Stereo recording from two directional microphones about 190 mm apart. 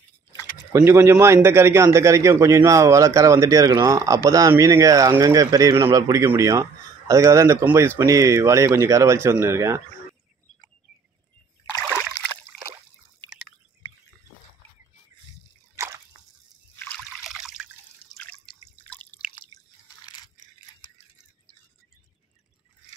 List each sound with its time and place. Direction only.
0.7 s a man's voice: 15° right (ahead or behind)
15.7 s a sound: 15° right (ahead or behind)
16.7 s trickle: 10° left (ahead or behind)
17.3 s water: 5° right (ahead or behind)
18.1 s drip: 5° left (ahead or behind)